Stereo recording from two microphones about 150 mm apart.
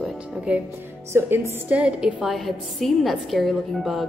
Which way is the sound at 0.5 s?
10° right (ahead or behind).